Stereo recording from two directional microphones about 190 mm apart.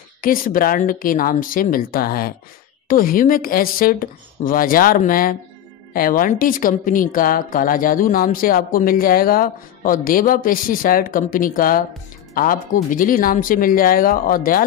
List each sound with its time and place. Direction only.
0.2 s a woman's voice: 45° left (ahead or behind)
12.9 s a woman's voice: 45° left (ahead or behind)